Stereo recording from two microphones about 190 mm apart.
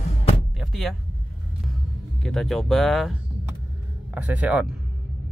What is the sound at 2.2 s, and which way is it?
Speech, 5° left (ahead or behind).